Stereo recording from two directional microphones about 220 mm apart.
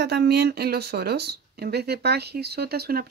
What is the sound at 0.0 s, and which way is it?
Speech, 50° right (ahead or behind).